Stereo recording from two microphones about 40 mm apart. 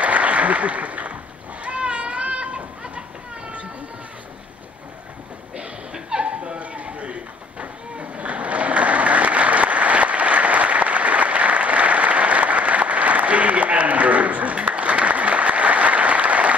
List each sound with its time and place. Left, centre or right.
0.0 s applause: right
1.6 s children playing: right
5.9 s a sound: centre